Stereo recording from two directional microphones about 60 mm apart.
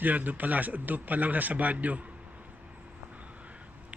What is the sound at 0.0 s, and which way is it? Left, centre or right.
A man's voice, right.